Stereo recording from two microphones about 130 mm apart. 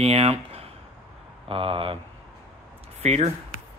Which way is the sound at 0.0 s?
55° right (ahead or behind).